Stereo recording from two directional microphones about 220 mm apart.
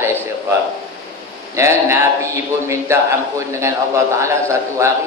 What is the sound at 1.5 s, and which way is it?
A man's voice, 10° right (ahead or behind).